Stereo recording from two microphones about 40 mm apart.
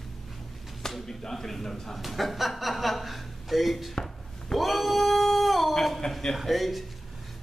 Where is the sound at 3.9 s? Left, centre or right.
Centre.